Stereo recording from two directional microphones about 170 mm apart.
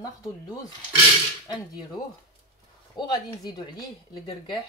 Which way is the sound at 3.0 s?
25° left (ahead or behind).